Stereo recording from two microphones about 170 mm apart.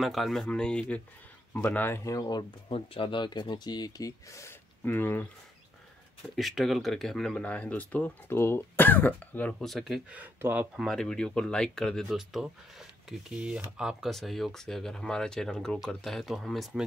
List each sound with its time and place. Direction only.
0.0 s speech: centre (ahead or behind)
6.2 s speech: centre (ahead or behind)
10.9 s speech: 5° left (ahead or behind)